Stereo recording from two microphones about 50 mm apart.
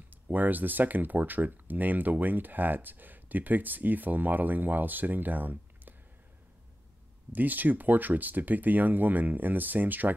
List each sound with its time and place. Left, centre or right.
0.1 s speech: right
7.3 s speech: right